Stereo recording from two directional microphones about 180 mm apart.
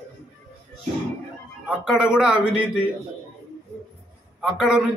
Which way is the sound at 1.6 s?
5° right (ahead or behind).